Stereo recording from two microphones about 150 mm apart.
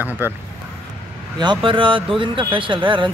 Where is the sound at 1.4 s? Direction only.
35° right (ahead or behind).